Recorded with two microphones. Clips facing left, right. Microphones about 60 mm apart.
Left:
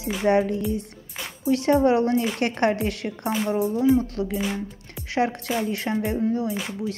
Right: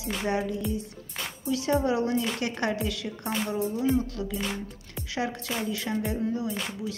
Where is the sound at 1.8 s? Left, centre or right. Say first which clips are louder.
Left 6 dB; left.